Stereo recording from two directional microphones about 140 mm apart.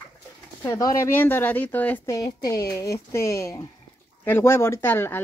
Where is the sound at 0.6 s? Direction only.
20° left (ahead or behind).